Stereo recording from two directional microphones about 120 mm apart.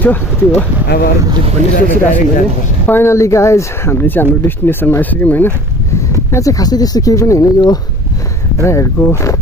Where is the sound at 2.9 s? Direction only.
20° left (ahead or behind).